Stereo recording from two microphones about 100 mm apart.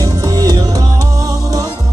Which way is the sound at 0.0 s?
35° right (ahead or behind).